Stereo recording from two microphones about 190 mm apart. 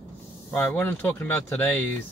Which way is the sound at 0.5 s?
10° left (ahead or behind).